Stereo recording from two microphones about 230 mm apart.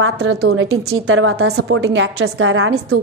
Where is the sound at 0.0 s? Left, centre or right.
Right.